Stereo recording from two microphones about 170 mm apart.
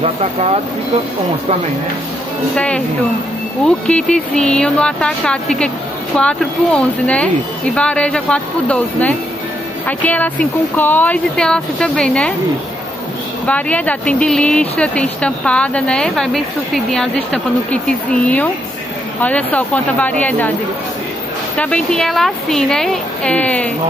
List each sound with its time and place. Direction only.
0.0 s speech: 35° right (ahead or behind)
2.5 s a woman's voice: 5° left (ahead or behind)
13.5 s speech: 10° left (ahead or behind)
21.5 s a woman's voice: 5° left (ahead or behind)